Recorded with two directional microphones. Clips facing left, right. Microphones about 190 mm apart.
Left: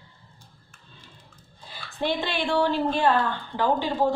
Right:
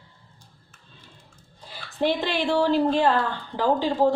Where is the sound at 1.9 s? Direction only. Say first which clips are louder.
Right 3 dB; 40° right (ahead or behind).